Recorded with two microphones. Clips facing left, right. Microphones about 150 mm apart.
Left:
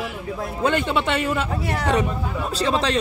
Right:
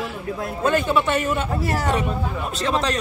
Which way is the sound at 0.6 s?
30° left (ahead or behind).